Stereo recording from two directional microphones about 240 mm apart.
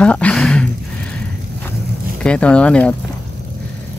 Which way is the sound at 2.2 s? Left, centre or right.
Centre.